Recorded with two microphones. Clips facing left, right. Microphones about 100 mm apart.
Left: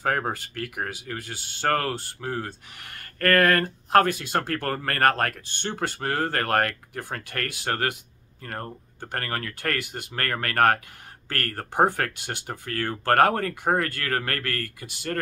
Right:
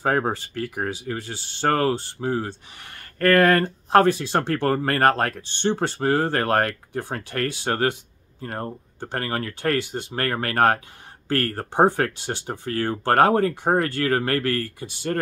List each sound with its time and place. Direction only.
0.0 s speech: 25° right (ahead or behind)